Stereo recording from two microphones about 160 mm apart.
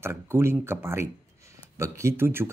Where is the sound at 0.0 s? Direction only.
15° right (ahead or behind).